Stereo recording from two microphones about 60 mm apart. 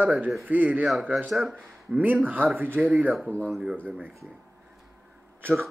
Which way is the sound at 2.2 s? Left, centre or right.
Right.